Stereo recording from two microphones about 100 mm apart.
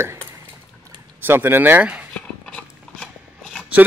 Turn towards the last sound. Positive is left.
turn(degrees=5)  # may be behind; listen again after turning